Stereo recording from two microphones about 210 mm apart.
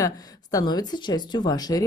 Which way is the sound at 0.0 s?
15° left (ahead or behind).